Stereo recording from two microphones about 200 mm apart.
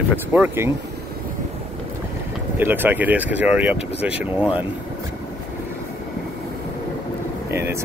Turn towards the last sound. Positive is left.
turn(degrees=-15)  # may be behind; listen again after turning